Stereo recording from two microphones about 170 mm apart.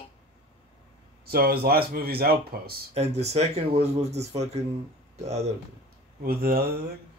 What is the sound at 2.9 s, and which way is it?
Speech, 40° right (ahead or behind).